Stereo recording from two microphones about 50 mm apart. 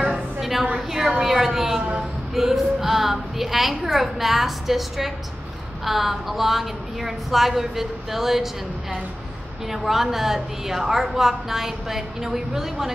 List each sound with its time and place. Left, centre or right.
0.1 s a sound: centre
0.7 s a woman's voice: centre
9.7 s a woman's voice: centre